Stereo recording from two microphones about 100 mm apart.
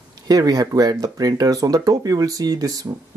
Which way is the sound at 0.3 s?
40° right (ahead or behind).